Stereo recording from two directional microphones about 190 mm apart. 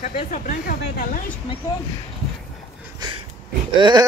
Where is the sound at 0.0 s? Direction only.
45° left (ahead or behind).